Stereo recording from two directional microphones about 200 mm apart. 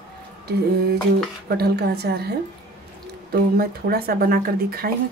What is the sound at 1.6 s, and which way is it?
A woman's voice, 55° right (ahead or behind).